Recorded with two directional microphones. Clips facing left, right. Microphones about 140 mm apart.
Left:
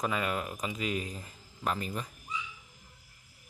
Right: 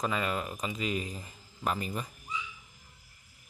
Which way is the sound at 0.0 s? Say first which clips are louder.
Even; 5° left (ahead or behind).